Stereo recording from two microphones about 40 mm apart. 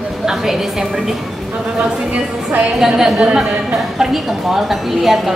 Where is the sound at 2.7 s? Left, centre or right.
Centre.